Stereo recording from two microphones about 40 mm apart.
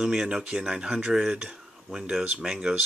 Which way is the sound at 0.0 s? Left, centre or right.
Centre.